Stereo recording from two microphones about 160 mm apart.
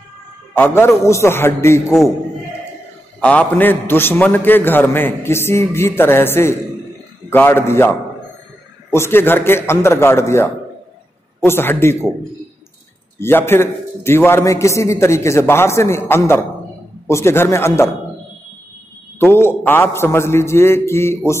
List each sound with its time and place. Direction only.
0.6 s a man's voice: 15° left (ahead or behind)
3.2 s a man's voice: 10° left (ahead or behind)
8.9 s a man's voice: 15° left (ahead or behind)
13.2 s a man's voice: 15° left (ahead or behind)
19.4 s a man's voice: 15° left (ahead or behind)